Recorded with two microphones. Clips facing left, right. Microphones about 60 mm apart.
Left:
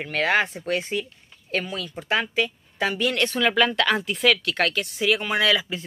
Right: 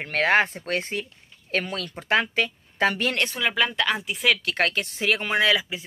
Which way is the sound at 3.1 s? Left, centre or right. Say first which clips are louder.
Left 3 dB; right.